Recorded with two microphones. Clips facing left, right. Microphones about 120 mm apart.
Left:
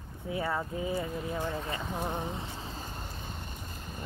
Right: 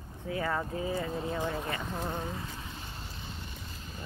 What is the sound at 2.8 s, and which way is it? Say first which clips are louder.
Vehicle: left 3 dB; 45° left (ahead or behind).